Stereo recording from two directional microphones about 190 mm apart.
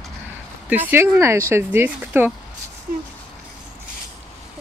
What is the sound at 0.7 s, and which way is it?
Speech, 10° right (ahead or behind).